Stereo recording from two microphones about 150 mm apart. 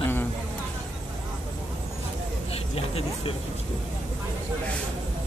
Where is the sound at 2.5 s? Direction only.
40° left (ahead or behind).